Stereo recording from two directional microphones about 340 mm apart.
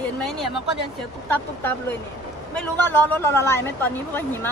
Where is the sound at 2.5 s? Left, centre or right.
Centre.